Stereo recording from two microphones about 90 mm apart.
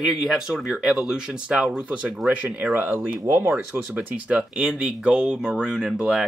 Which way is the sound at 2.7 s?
25° right (ahead or behind).